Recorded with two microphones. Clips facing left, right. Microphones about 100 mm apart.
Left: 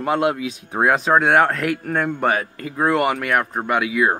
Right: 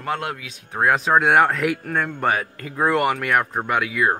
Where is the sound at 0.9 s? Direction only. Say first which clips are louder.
Left 1 dB; centre (ahead or behind).